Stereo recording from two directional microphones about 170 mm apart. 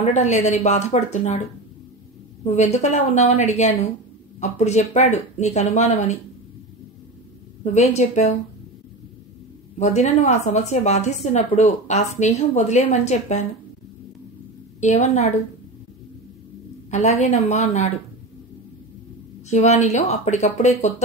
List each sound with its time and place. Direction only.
0.0 s speech: 45° left (ahead or behind)
2.4 s speech: 40° left (ahead or behind)
7.6 s speech: 40° left (ahead or behind)
9.8 s speech: 40° left (ahead or behind)
14.8 s speech: 45° left (ahead or behind)
16.9 s speech: 40° left (ahead or behind)
19.5 s speech: 40° left (ahead or behind)